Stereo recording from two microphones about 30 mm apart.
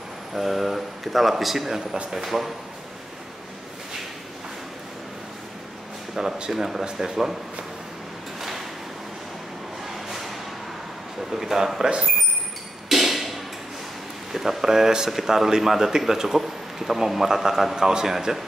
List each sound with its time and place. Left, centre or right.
0.3 s a man's voice: centre
6.2 s a man's voice: centre
6.8 s speech: right
8.4 s drawer open or close: centre
9.9 s vehicle: centre
11.3 s a man's voice: centre
12.8 s hammer: centre
14.3 s a man's voice: centre